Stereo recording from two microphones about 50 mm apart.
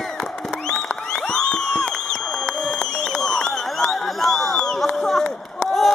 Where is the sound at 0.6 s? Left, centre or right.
Centre.